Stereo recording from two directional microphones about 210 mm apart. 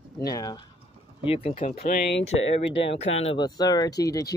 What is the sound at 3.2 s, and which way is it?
Speech, 20° left (ahead or behind).